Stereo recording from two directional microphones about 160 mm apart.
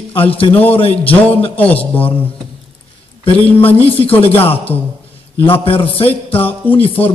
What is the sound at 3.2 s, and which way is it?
A man's voice, 35° left (ahead or behind).